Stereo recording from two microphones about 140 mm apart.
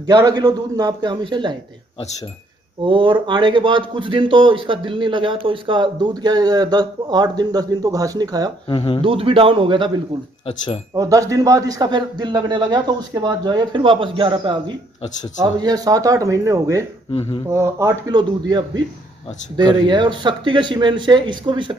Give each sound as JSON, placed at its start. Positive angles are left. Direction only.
{"t": 0.0, "sound": "speech", "side_deg": -25}
{"t": 2.8, "sound": "speech", "side_deg": -35}
{"t": 8.6, "sound": "speech", "side_deg": 40}
{"t": 9.0, "sound": "speech", "side_deg": -40}
{"t": 11.0, "sound": "speech", "side_deg": -25}
{"t": 17.1, "sound": "a sound", "side_deg": 45}
{"t": 17.5, "sound": "speech", "side_deg": -20}